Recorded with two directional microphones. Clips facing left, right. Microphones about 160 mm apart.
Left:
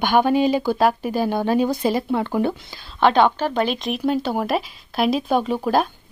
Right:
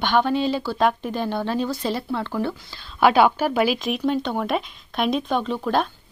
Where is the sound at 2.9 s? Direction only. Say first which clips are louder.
Even; 5° right (ahead or behind).